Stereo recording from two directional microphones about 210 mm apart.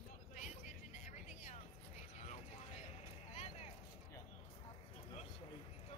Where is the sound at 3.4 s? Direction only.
30° left (ahead or behind).